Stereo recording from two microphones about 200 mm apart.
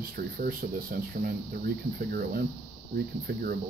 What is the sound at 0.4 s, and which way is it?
Speech, 45° right (ahead or behind).